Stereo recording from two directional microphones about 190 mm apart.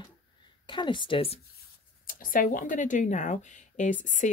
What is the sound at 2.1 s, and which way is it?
Speech, 45° left (ahead or behind).